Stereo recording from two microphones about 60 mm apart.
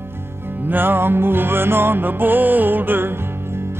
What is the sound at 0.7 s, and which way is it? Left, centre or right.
Music, right.